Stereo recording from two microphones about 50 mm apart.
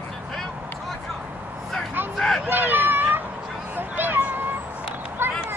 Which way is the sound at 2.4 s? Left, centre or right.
Right.